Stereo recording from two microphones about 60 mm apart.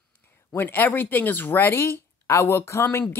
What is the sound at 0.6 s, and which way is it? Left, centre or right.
Speech, left.